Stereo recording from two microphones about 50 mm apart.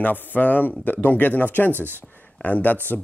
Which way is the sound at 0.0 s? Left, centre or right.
Left.